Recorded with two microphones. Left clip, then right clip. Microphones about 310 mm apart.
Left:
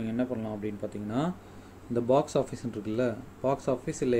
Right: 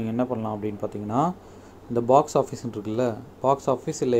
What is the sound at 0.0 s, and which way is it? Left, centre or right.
Speech, centre.